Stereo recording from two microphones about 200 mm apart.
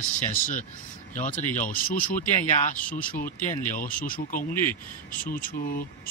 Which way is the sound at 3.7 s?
40° left (ahead or behind).